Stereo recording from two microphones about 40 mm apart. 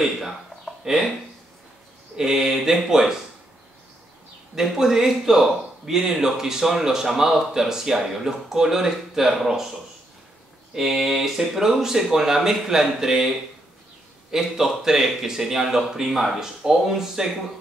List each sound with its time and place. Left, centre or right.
0.8 s speech: centre
2.1 s speech: centre
4.6 s speech: centre
10.7 s speech: centre
14.3 s speech: centre